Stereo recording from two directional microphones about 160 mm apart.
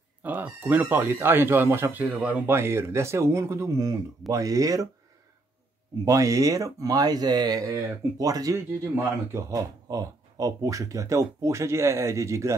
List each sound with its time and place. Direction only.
0.2 s a man's voice: 10° right (ahead or behind)
6.0 s speech: 20° right (ahead or behind)